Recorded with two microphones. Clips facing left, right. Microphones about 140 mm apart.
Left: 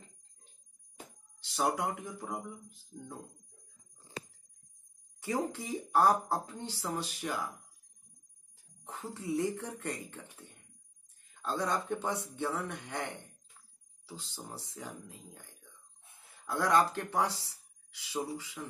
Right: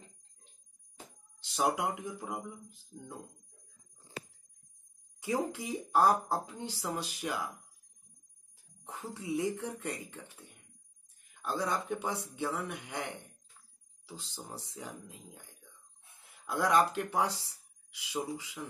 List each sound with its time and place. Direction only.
1.5 s speech: 15° right (ahead or behind)
5.2 s speech: 15° right (ahead or behind)
8.8 s speech: 15° right (ahead or behind)